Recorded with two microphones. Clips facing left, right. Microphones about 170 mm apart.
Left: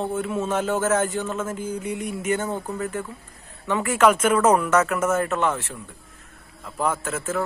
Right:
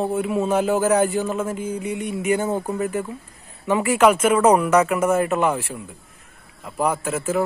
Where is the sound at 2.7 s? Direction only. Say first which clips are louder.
Right 4 dB; 20° right (ahead or behind).